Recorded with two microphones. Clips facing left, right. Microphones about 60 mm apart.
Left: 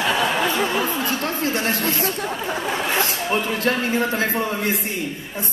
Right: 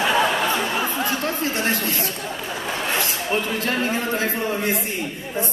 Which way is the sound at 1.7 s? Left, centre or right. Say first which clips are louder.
Left 2 dB; left.